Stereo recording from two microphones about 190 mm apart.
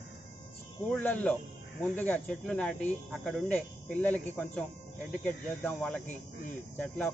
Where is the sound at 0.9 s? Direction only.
10° left (ahead or behind).